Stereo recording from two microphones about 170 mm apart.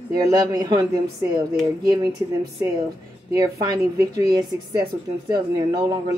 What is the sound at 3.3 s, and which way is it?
Speech, 20° right (ahead or behind).